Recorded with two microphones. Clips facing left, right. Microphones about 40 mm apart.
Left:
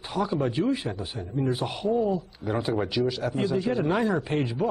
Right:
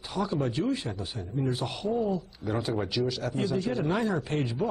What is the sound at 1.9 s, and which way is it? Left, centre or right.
A man's voice, centre.